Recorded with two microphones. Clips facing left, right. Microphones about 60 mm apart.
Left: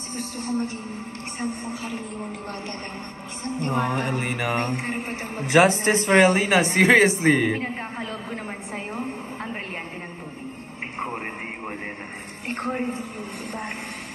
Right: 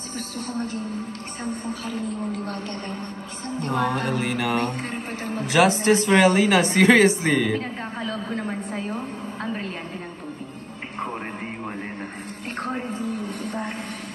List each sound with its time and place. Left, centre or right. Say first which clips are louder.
3.7 s speech: right 2 dB; left
4.6 s speech: left 1 dB; left
5.4 s speech: left 1 dB; left
7.6 s a woman's voice: even; left